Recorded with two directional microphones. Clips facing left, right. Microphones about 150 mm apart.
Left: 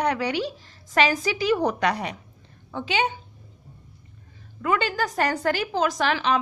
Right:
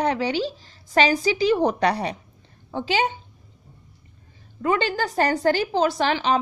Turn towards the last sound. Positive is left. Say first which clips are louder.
# right 2 dB
turn(degrees=-35)  # may be behind; listen again after turning